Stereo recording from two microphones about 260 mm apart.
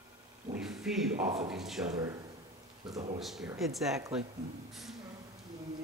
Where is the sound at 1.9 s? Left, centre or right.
Centre.